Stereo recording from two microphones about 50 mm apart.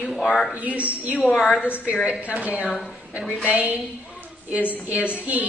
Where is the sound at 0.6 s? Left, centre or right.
Right.